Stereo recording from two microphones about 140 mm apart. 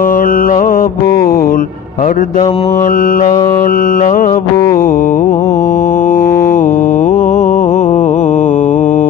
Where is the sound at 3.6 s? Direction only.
85° left; by 4.5 s 65° left (ahead or behind).